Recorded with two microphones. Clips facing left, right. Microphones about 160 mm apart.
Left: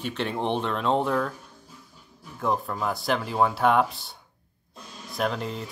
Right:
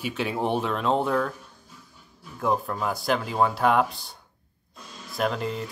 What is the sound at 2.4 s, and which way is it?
Speech, centre (ahead or behind).